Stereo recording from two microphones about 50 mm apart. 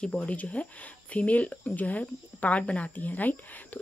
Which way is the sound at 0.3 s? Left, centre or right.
Left.